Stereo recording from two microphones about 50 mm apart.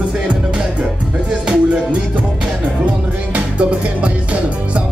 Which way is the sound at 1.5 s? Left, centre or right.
Right.